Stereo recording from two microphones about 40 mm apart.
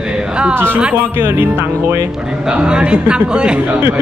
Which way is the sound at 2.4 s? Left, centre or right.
Right.